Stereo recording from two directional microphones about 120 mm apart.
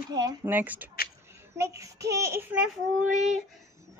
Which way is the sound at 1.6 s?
25° right (ahead or behind).